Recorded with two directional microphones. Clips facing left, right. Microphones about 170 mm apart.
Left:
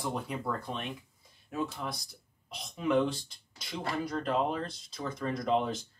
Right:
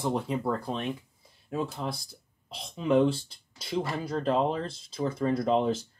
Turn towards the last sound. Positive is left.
turn(degrees=-30)  # may be behind; listen again after turning